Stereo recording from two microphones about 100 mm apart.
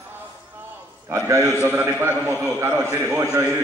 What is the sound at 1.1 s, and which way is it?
A man's voice, 30° right (ahead or behind).